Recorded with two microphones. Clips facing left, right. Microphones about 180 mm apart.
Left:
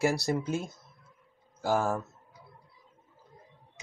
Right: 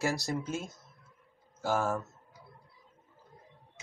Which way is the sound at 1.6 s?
15° left (ahead or behind).